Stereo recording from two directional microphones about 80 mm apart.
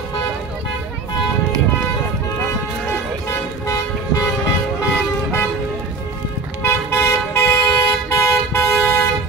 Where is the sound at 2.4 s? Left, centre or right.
Left.